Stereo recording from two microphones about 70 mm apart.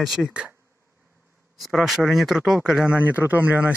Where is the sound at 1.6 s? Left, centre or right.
Centre.